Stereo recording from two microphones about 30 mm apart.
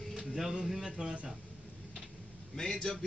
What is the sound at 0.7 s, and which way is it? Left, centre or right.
Speech, right.